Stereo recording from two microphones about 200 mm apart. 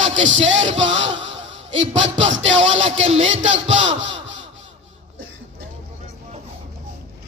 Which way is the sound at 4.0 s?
65° right (ahead or behind).